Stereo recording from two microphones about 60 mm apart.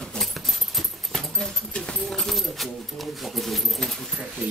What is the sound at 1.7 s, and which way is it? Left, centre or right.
Speech, centre.